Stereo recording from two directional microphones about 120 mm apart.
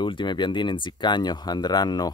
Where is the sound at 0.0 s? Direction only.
40° left (ahead or behind).